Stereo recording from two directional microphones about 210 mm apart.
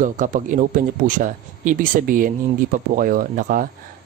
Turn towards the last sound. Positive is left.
turn(degrees=-40)  # may be behind; listen again after turning